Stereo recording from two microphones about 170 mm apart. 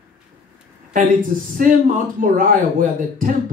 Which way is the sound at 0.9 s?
50° right (ahead or behind).